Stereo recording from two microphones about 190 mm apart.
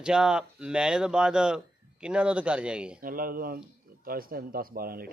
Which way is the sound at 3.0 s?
50° right (ahead or behind).